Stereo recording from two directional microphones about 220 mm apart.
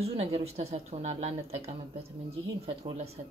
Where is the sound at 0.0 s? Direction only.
30° right (ahead or behind).